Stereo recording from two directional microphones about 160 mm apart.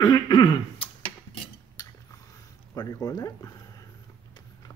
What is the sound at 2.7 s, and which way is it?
Speech, 20° left (ahead or behind).